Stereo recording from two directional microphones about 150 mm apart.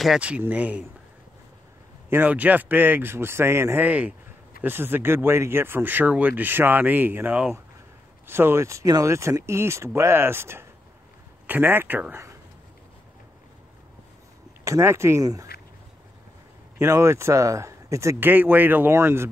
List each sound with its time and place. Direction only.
0.0 s speech: 5° right (ahead or behind)
2.0 s speech: 10° right (ahead or behind)
14.6 s speech: 20° right (ahead or behind)
16.7 s speech: 20° right (ahead or behind)